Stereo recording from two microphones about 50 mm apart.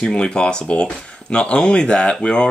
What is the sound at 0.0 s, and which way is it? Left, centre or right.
Speech, centre.